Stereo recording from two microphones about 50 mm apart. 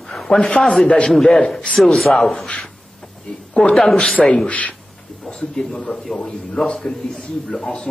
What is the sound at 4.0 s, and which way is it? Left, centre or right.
Speech, left.